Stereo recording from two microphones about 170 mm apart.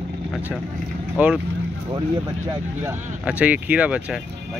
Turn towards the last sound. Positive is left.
turn(degrees=-5)  # may be behind; listen again after turning